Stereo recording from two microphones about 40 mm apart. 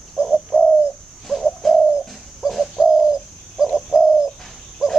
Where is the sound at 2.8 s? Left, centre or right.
Centre.